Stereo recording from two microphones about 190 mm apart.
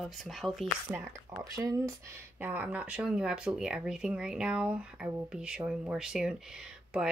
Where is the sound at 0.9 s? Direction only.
15° right (ahead or behind).